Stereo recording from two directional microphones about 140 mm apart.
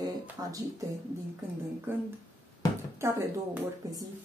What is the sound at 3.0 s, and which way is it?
Speech, 20° right (ahead or behind).